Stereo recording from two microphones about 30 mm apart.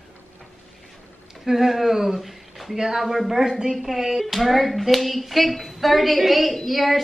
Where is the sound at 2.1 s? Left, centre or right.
Centre.